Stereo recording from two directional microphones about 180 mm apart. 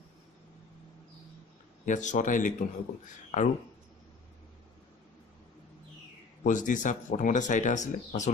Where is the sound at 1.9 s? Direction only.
45° left (ahead or behind).